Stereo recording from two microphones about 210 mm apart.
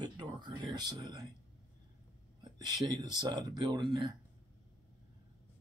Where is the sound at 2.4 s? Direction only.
20° right (ahead or behind).